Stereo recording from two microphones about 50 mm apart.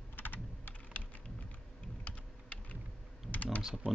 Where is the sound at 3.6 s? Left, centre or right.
Centre.